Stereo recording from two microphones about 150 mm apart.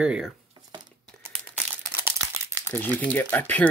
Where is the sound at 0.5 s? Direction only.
30° right (ahead or behind).